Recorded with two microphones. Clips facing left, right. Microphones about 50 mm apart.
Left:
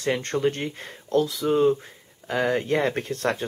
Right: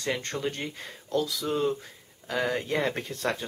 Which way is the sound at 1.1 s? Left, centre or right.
Left.